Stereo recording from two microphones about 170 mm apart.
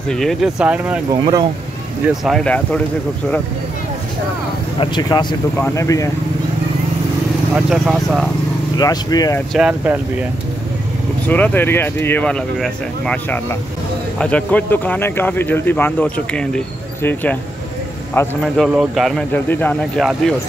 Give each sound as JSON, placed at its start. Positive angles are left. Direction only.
{"t": 0.1, "sound": "speech", "side_deg": 0}
{"t": 1.2, "sound": "speech", "side_deg": -25}
{"t": 2.2, "sound": "speech", "side_deg": 5}
{"t": 4.7, "sound": "speech", "side_deg": 25}
{"t": 7.5, "sound": "speech", "side_deg": -5}
{"t": 8.7, "sound": "speech", "side_deg": 25}
{"t": 9.5, "sound": "speech", "side_deg": -5}
{"t": 11.2, "sound": "speech", "side_deg": 10}
{"t": 18.6, "sound": "speech", "side_deg": 0}
{"t": 19.3, "sound": "speech", "side_deg": 10}
{"t": 20.0, "sound": "speech", "side_deg": 0}